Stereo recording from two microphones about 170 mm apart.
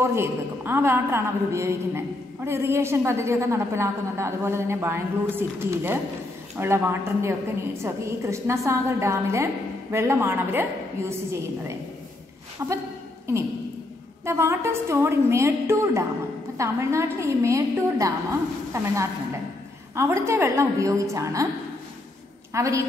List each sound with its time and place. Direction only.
0.0 s a woman's voice: 15° right (ahead or behind)
14.2 s a woman's voice: 15° right (ahead or behind)
20.0 s a woman's voice: 15° right (ahead or behind)
22.5 s a woman's voice: 15° right (ahead or behind)